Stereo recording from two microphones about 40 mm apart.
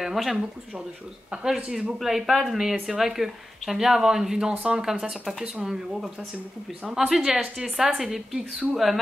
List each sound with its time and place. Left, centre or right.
0.0 s speech: centre
1.3 s speech: centre
5.6 s speech: centre